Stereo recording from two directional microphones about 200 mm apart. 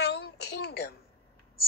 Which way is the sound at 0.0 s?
55° left (ahead or behind).